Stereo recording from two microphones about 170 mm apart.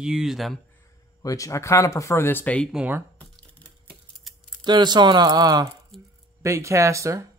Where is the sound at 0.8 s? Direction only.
20° left (ahead or behind).